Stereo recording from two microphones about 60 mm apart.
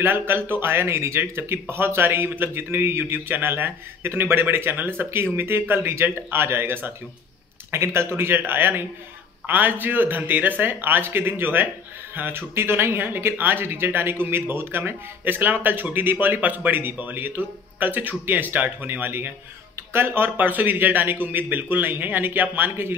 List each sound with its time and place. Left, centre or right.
0.0 s speech: right